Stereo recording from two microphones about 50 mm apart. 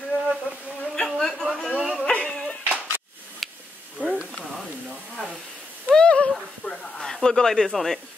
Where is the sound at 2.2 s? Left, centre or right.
Centre.